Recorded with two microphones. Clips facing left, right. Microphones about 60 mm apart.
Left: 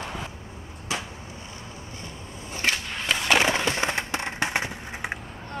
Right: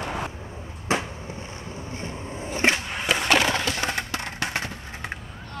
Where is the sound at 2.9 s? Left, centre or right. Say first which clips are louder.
Right 2 dB; centre.